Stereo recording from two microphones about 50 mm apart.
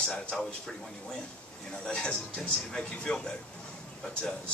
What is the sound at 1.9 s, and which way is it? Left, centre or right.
Speech, centre.